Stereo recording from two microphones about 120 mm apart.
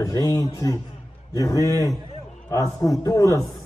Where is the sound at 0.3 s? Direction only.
30° left (ahead or behind).